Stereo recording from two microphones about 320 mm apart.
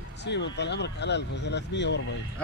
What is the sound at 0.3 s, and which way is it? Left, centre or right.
Speech, left.